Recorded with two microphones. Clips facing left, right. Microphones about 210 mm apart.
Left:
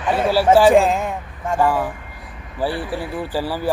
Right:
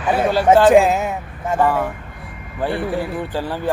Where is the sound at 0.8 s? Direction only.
5° right (ahead or behind).